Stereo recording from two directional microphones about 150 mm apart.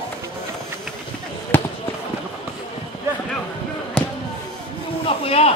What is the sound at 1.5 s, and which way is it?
Basketball bounce, 15° left (ahead or behind).